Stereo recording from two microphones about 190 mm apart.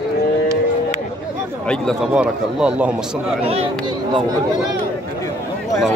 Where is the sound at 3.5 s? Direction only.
30° right (ahead or behind).